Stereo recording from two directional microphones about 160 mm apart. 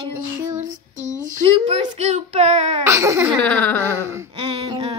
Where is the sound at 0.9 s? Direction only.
50° right (ahead or behind).